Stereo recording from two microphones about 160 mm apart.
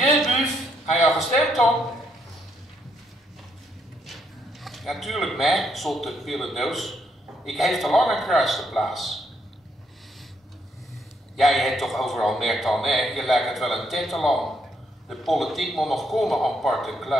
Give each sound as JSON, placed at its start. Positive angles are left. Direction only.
{"t": 0.0, "sound": "a sound", "side_deg": 0}
{"t": 0.9, "sound": "a man's voice", "side_deg": 0}
{"t": 4.0, "sound": "a man's voice", "side_deg": 0}
{"t": 11.3, "sound": "a man's voice", "side_deg": 0}